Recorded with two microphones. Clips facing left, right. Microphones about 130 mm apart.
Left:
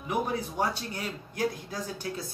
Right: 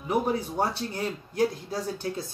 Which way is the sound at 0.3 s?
30° right (ahead or behind).